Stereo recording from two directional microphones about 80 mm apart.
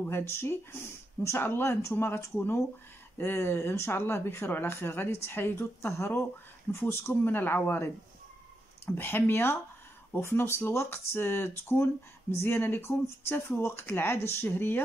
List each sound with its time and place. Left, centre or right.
0.0 s speech: left